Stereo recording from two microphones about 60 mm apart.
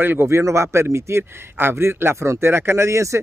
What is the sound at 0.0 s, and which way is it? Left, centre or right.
Speech, right.